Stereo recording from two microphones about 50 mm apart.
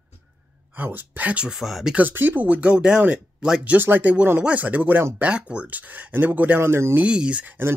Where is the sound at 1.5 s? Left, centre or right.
Centre.